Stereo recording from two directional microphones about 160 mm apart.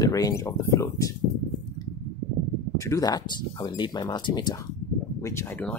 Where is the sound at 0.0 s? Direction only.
20° left (ahead or behind).